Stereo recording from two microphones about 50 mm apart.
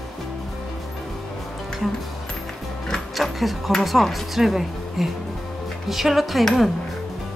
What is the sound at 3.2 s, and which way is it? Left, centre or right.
Speech, centre.